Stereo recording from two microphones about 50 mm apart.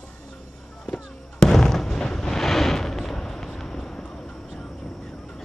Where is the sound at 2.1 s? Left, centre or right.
Centre.